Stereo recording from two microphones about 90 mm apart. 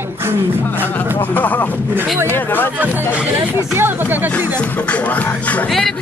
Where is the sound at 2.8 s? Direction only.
15° right (ahead or behind).